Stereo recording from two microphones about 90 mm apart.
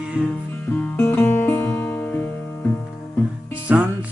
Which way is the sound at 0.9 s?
20° left (ahead or behind).